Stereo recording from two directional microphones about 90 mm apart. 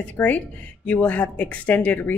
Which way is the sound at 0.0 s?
15° left (ahead or behind).